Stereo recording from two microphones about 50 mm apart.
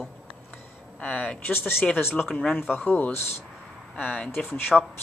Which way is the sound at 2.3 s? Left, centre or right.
Centre.